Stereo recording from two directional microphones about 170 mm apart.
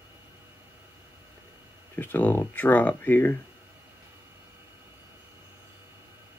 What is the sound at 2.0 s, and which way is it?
Speech, 10° left (ahead or behind).